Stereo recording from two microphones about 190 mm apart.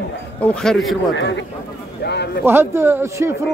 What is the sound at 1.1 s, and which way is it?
Speech, 75° left (ahead or behind).